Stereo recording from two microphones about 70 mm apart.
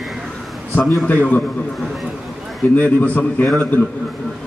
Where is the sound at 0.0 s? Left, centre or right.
Centre.